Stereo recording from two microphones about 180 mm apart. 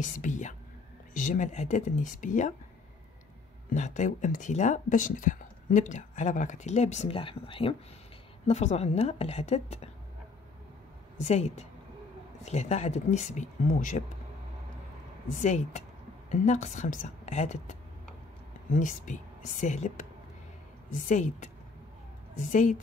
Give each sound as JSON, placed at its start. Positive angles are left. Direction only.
{"t": 0.2, "sound": "speech", "side_deg": 45}
{"t": 3.7, "sound": "speech", "side_deg": 40}
{"t": 11.1, "sound": "speech", "side_deg": 40}
{"t": 15.3, "sound": "speech", "side_deg": 40}